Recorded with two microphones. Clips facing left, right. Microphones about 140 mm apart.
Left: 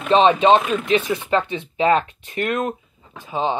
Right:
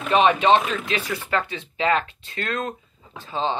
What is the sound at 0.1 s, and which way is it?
Speech, 25° left (ahead or behind).